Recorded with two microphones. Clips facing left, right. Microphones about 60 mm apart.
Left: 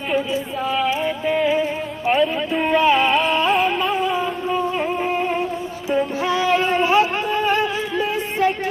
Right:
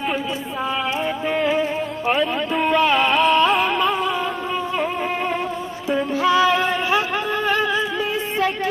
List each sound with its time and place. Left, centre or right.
0.7 s yodeling: centre
2.0 s music: centre
6.2 s music: left